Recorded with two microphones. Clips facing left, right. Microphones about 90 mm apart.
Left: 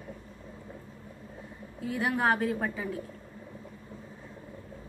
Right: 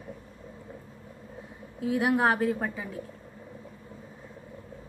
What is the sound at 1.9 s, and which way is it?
Speech, 15° right (ahead or behind).